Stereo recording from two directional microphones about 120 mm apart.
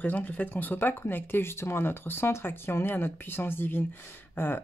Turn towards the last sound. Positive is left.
turn(degrees=20)  # may be behind; listen again after turning